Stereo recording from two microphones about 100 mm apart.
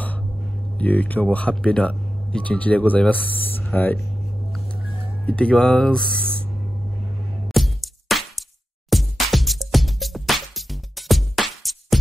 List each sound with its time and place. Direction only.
0.7 s speech: 15° left (ahead or behind)
5.2 s speech: 10° left (ahead or behind)
7.4 s music: centre (ahead or behind)